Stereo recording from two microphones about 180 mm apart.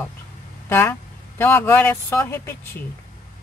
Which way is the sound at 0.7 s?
10° left (ahead or behind).